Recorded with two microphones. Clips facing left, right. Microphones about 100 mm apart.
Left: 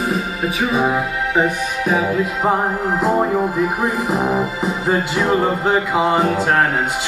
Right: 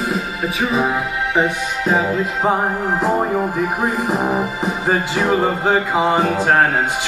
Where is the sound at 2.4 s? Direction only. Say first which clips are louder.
Even; centre (ahead or behind).